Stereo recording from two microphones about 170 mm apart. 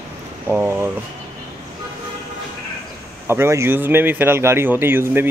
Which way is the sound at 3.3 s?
15° right (ahead or behind).